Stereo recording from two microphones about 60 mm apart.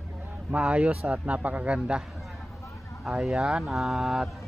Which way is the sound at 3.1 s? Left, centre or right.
Centre.